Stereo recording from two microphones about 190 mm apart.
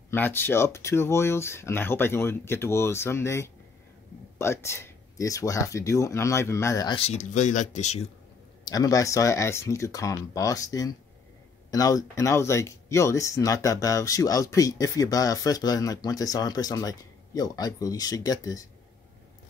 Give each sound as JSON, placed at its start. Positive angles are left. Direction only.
{"t": 0.1, "sound": "speech", "side_deg": 10}
{"t": 7.0, "sound": "speech", "side_deg": 35}
{"t": 8.6, "sound": "speech", "side_deg": 20}